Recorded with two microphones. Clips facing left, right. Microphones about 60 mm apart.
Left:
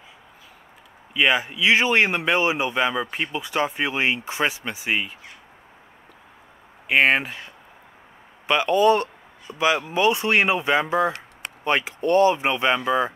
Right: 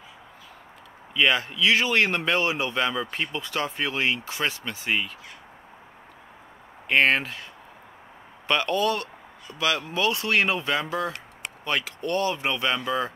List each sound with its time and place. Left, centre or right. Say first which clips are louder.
1.1 s speech: left 2 dB; centre
6.9 s speech: left 2 dB; centre
8.5 s speech: left 4 dB; centre
8.8 s speech: left 8 dB; left